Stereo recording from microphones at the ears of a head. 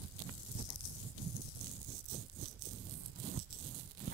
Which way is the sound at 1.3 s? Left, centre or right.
Right.